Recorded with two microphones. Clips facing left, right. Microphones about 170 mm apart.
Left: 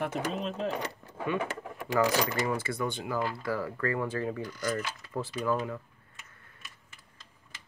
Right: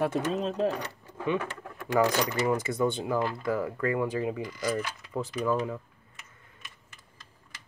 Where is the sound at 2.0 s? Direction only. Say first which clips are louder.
Right 2 dB; 15° right (ahead or behind).